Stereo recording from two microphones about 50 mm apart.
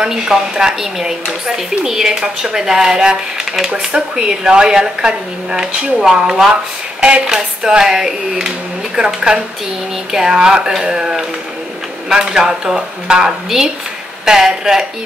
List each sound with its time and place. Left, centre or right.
0.0 s speech: centre
7.0 s speech: right